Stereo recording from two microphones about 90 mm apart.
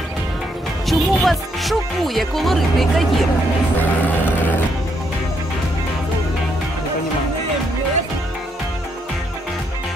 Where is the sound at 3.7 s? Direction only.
25° left (ahead or behind).